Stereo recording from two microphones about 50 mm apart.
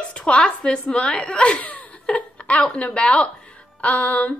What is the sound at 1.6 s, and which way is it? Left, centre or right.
Laughter, left.